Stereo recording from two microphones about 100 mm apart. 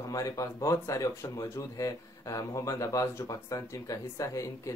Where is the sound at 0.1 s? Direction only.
35° left (ahead or behind).